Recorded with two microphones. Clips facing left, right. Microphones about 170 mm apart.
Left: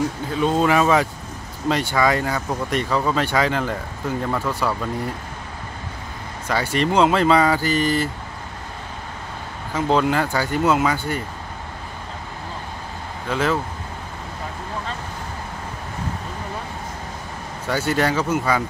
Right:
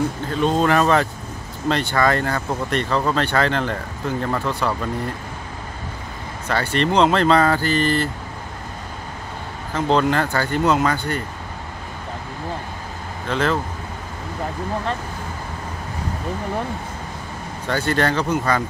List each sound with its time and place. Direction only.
0.3 s speech: 5° left (ahead or behind)
6.4 s speech: 10° left (ahead or behind)
9.8 s speech: 5° left (ahead or behind)
13.3 s speech: 5° left (ahead or behind)
17.6 s speech: 10° left (ahead or behind)